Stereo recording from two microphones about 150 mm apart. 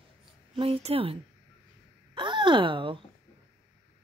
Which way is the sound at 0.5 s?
40° right (ahead or behind).